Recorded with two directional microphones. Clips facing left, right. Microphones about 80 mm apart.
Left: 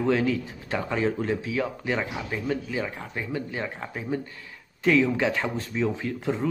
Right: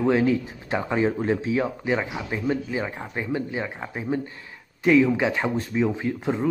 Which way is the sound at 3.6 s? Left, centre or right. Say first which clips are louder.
Right 3 dB; centre.